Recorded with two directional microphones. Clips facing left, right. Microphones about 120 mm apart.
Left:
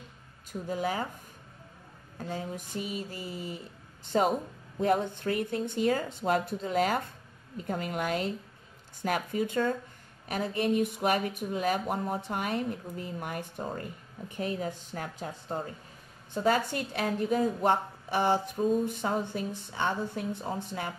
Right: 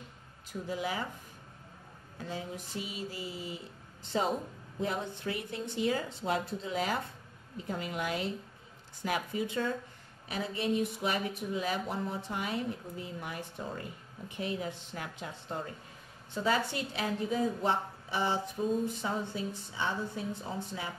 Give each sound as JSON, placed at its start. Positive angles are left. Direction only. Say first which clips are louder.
{"t": 0.5, "sound": "speech", "louder": "left 4 dB", "side_deg": 45}
{"t": 2.1, "sound": "a woman's voice", "louder": "left 3 dB", "side_deg": 45}
{"t": 16.4, "sound": "speech", "louder": "left 4 dB", "side_deg": 50}